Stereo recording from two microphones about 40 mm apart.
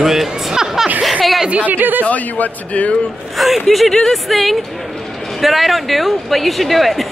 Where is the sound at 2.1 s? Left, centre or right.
Left.